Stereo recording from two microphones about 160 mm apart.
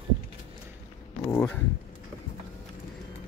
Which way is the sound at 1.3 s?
10° left (ahead or behind).